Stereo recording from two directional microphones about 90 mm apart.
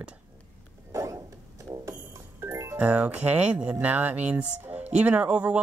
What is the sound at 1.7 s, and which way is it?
Music, 65° right (ahead or behind).